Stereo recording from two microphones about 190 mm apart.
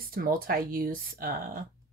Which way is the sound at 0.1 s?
50° right (ahead or behind).